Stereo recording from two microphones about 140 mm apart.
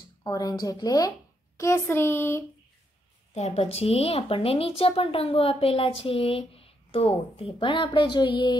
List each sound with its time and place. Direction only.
0.2 s a woman's voice: 25° left (ahead or behind)
1.6 s speech: 20° left (ahead or behind)
3.3 s a woman's voice: 50° left (ahead or behind)